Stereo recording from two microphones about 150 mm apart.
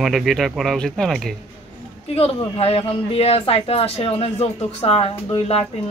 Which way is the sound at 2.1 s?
40° left (ahead or behind).